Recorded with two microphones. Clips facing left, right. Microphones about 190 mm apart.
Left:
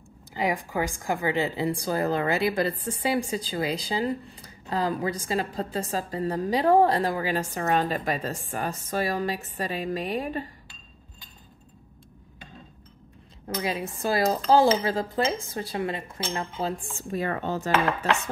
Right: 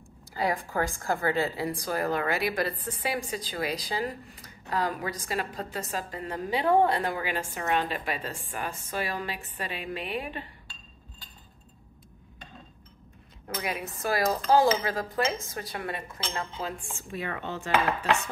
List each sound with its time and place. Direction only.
0.3 s a woman's voice: 15° left (ahead or behind); by 10.4 s 40° left (ahead or behind)
13.6 s a woman's voice: 30° left (ahead or behind)
17.1 s speech: 40° left (ahead or behind)